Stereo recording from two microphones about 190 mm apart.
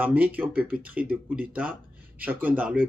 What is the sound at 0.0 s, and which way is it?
A man's voice, 10° right (ahead or behind).